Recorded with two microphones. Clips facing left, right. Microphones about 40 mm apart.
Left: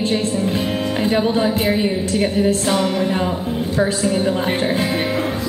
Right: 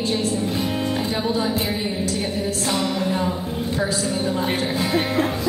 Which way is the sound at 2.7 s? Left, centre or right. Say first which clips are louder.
Left 4 dB; left.